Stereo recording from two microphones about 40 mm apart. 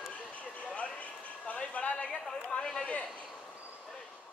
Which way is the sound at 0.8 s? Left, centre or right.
Left.